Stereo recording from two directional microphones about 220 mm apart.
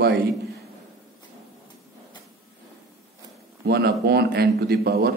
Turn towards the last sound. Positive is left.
turn(degrees=-45)  # may be behind; listen again after turning